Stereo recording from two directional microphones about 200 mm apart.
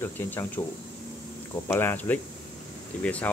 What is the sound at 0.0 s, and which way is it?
Speech, 10° left (ahead or behind).